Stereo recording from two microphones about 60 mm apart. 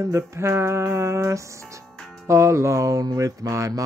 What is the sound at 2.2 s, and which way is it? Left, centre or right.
Music, right.